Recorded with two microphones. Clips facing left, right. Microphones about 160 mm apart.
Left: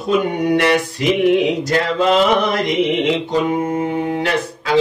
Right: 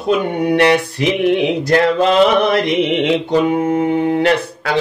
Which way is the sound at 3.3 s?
65° right (ahead or behind).